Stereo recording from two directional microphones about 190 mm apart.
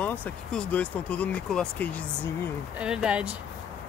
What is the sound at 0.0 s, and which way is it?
Speech, 5° left (ahead or behind).